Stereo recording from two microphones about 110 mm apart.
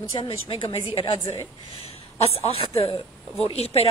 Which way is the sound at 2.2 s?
65° left (ahead or behind).